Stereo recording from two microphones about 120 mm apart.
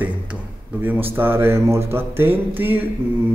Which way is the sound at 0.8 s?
15° right (ahead or behind).